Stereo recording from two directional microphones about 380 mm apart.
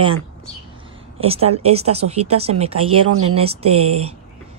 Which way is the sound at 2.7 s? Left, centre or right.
Right.